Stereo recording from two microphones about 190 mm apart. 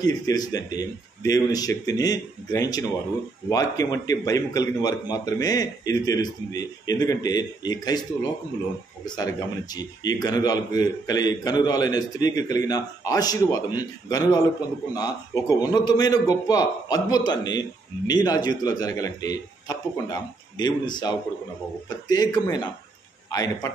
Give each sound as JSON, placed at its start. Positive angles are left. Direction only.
{"t": 0.0, "sound": "a man's voice", "side_deg": 20}